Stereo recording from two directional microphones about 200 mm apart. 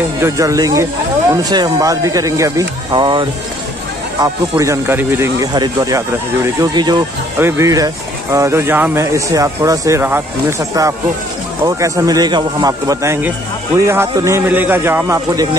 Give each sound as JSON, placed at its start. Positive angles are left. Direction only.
{"t": 0.2, "sound": "speech", "side_deg": -15}